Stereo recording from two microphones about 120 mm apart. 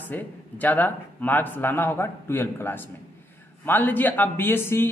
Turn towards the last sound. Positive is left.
turn(degrees=20)  # may be behind; listen again after turning